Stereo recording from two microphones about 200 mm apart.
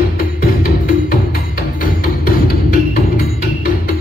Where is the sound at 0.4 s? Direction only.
45° left (ahead or behind).